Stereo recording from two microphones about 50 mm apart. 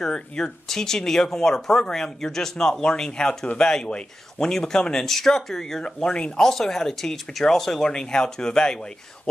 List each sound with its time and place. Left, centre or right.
0.0 s speech: centre